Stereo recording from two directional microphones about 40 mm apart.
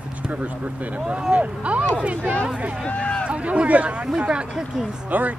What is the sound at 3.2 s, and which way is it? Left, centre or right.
A man's voice, right.